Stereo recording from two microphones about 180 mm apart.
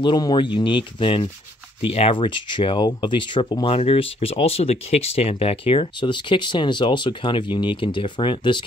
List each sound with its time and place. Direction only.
0.0 s speech: 25° left (ahead or behind)